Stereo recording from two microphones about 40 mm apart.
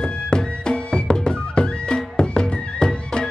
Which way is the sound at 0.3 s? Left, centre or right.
Left.